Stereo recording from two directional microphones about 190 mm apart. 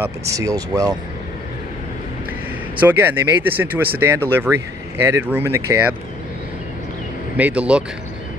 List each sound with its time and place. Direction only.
0.0 s speech: 15° right (ahead or behind)
2.8 s speech: 10° right (ahead or behind)
7.3 s speech: 5° right (ahead or behind)